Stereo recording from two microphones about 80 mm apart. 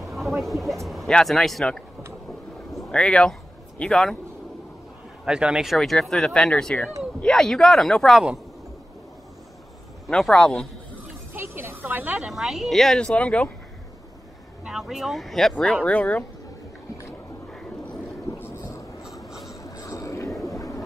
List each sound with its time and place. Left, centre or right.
0.0 s a man's voice: centre
2.7 s a sound: centre
5.2 s speech: centre
5.8 s speech: centre
10.0 s a sound: centre
11.3 s speech: right
12.2 s speech: centre
14.6 s speech: centre
15.8 s speech: centre
17.5 s vehicle: centre
19.6 s a sound: left
20.4 s train: left